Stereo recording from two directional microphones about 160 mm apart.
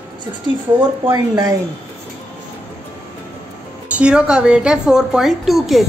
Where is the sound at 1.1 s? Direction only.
25° right (ahead or behind).